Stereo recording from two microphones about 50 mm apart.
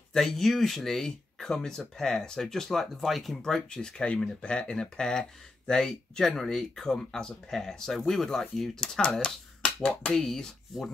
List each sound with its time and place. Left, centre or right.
0.1 s speech: centre